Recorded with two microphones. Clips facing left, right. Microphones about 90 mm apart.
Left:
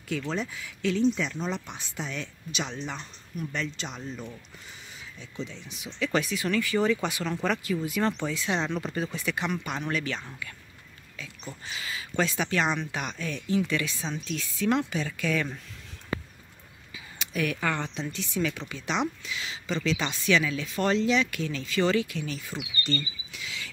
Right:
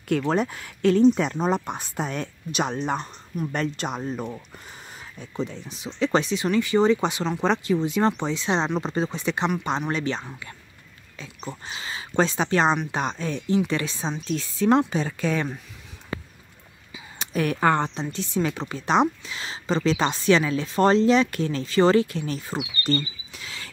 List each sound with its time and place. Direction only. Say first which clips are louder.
0.1 s speech: right 8 dB; 55° right (ahead or behind); by 15.5 s 35° right (ahead or behind)
17.2 s speech: right 7 dB; 40° right (ahead or behind)
22.8 s a sound: right 8 dB; 40° right (ahead or behind)